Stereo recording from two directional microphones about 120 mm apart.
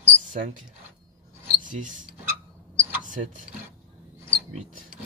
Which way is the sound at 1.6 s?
90° right.